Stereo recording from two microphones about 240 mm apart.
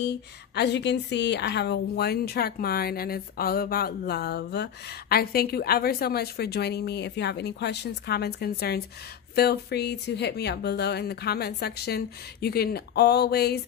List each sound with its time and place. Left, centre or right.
0.6 s a woman's voice: left